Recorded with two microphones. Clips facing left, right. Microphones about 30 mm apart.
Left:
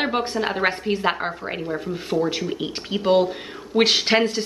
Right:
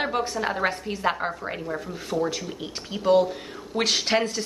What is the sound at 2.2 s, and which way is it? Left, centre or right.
A woman's voice, left.